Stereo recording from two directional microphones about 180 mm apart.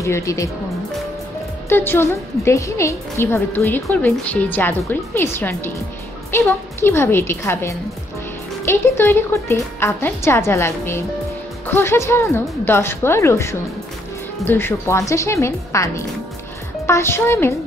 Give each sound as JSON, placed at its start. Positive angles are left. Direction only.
{"t": 0.0, "sound": "a woman's voice", "side_deg": 15}
{"t": 1.7, "sound": "a woman's voice", "side_deg": 10}